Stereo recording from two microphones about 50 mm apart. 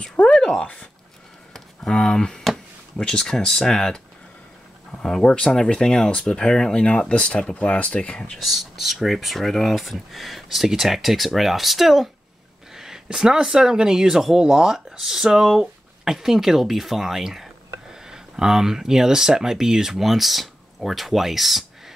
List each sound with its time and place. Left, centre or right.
0.0 s speech: left
1.5 s a sound: centre
2.4 s speech: centre
5.2 s speech: centre
8.4 s speech: centre